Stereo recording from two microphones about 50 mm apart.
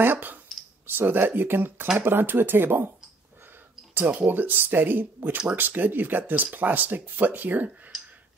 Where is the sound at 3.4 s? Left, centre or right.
Right.